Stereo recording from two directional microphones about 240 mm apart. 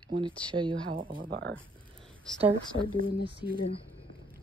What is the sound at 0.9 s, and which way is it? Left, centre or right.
Speech, right.